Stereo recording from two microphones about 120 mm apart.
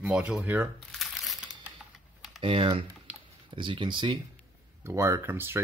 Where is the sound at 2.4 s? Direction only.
50° right (ahead or behind).